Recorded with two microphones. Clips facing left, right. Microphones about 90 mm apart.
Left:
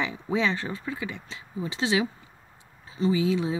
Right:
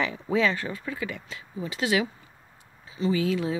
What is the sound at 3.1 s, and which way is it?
Speech, 20° left (ahead or behind).